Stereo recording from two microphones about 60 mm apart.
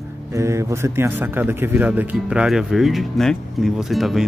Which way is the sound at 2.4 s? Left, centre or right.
Centre.